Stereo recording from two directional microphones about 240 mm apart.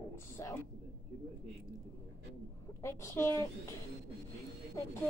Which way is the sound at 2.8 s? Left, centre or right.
Centre.